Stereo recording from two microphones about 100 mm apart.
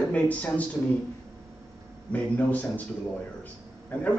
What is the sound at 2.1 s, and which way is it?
Speech, 15° left (ahead or behind).